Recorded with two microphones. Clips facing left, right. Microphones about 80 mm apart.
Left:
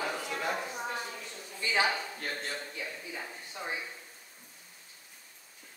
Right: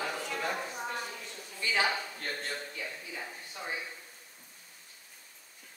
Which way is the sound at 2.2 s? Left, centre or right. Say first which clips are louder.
Even; centre.